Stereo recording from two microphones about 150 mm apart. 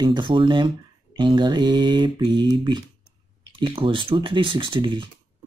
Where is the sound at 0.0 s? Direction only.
30° right (ahead or behind).